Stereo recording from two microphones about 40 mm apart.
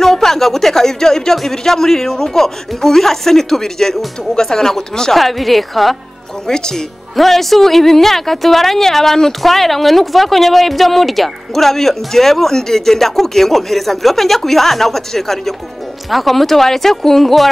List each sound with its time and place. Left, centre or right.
0.0 s speech: centre
5.1 s speech: centre
6.4 s speech: centre
7.2 s speech: centre